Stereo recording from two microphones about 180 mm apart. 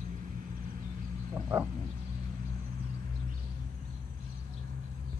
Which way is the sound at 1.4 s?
15° right (ahead or behind).